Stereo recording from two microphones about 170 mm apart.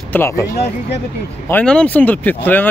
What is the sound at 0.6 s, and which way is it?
Speech, 75° left (ahead or behind).